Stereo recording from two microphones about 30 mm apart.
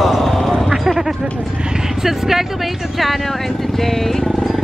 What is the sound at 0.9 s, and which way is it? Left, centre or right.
Speech, centre.